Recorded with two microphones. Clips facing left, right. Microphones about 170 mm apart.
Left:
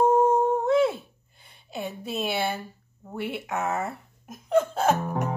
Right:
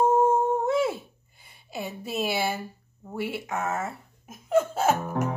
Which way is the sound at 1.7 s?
5° right (ahead or behind).